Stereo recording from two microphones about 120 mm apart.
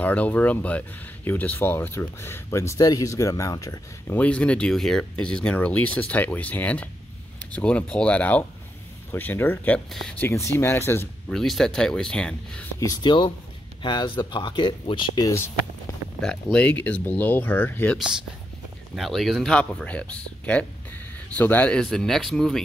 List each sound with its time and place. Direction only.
0.0 s speech: 10° left (ahead or behind); by 3.8 s 30° left (ahead or behind)
4.1 s speech: 10° left (ahead or behind)
11.2 s speech: centre (ahead or behind)
12.8 s speech: 35° left (ahead or behind)
15.2 s speech: 20° left (ahead or behind)
16.2 s speech: 5° left (ahead or behind)
17.9 s speech: 5° right (ahead or behind)